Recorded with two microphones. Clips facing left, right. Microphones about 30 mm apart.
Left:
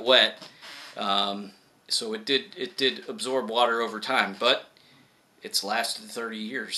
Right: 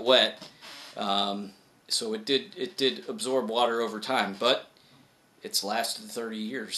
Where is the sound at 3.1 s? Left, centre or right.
Left.